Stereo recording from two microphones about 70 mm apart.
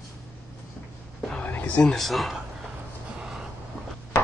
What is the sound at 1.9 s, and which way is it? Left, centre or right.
Speech, centre.